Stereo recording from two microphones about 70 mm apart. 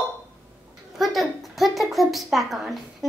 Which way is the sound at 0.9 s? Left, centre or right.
Centre.